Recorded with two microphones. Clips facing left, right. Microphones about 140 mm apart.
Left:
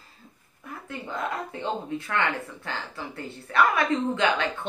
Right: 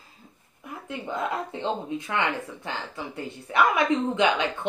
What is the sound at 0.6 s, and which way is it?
A woman's voice, 15° right (ahead or behind).